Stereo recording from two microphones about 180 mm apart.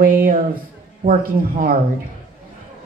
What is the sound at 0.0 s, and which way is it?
Speech, 50° right (ahead or behind).